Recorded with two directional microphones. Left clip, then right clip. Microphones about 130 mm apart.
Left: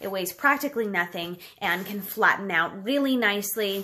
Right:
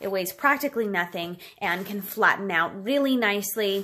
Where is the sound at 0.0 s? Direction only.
35° right (ahead or behind).